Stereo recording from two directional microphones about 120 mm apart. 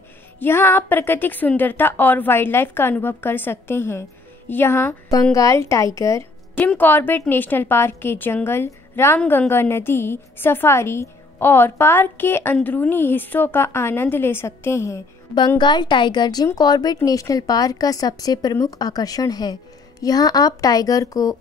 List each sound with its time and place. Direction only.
0.4 s a woman's voice: 20° left (ahead or behind)
6.5 s a woman's voice: 15° left (ahead or behind)
15.3 s speech: 40° left (ahead or behind)